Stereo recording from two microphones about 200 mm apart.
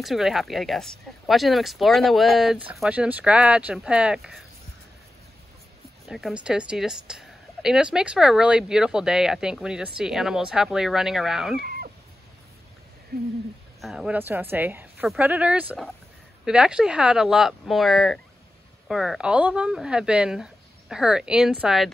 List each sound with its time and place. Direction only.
0.0 s a woman's voice: centre (ahead or behind)
6.0 s a woman's voice: centre (ahead or behind)
11.6 s a sound: 50° right (ahead or behind)
13.7 s a woman's voice: centre (ahead or behind)